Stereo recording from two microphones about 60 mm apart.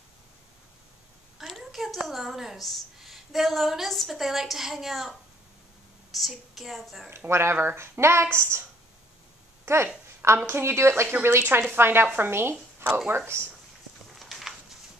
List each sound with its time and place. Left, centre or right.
1.4 s a sound: centre
2.0 s a woman's voice: centre
6.1 s a woman's voice: centre
7.1 s speech: right
9.7 s speech: right
14.1 s a sound: centre